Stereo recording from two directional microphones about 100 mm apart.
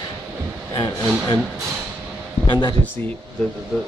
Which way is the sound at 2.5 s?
45° left (ahead or behind).